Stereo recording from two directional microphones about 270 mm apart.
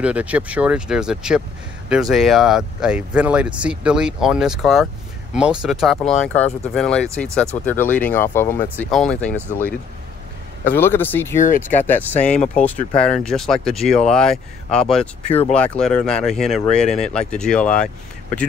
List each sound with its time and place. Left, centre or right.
0.0 s speech: centre
10.6 s speech: centre